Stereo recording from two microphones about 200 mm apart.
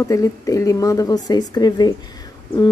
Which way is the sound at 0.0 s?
15° left (ahead or behind).